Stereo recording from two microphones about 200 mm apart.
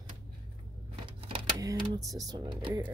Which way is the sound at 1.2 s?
25° right (ahead or behind).